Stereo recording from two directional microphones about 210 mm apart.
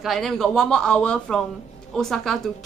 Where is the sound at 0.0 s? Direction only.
Centre (ahead or behind).